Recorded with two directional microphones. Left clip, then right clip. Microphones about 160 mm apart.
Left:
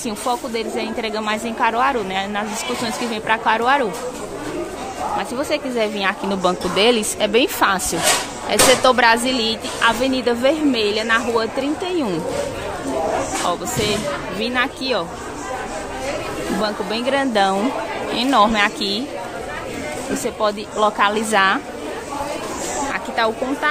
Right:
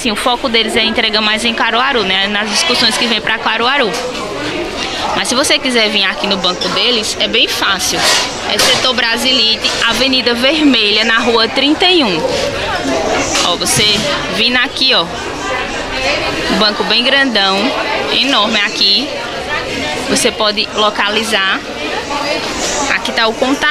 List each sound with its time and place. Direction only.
0.3 s speech: 10° left (ahead or behind)
5.5 s speech: 15° left (ahead or behind)
6.2 s speech: 35° left (ahead or behind); by 11.7 s 10° left (ahead or behind)
11.8 s speech: centre (ahead or behind)
13.5 s speech: 15° left (ahead or behind)
16.6 s speech: 15° left (ahead or behind)
18.1 s speech: 35° left (ahead or behind)
20.2 s speech: 15° left (ahead or behind)
20.8 s speech: 30° left (ahead or behind)
23.1 s speech: 5° left (ahead or behind)